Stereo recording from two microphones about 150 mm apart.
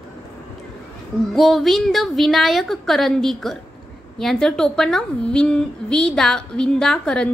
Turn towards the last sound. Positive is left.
turn(degrees=5)  # may be behind; listen again after turning